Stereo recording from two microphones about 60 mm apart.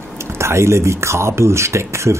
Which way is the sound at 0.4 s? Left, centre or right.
Right.